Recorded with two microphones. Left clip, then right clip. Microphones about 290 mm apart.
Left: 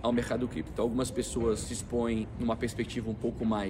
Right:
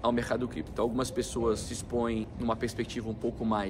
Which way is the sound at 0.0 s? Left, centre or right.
Centre.